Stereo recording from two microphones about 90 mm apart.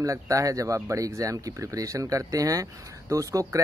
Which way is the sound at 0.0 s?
40° right (ahead or behind).